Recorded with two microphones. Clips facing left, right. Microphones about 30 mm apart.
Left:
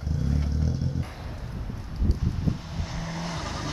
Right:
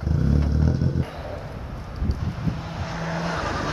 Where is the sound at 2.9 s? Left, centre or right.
Centre.